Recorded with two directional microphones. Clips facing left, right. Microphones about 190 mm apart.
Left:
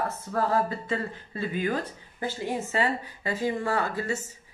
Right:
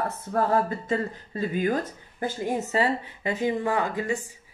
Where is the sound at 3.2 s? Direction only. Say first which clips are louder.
Right 2 dB; 20° right (ahead or behind).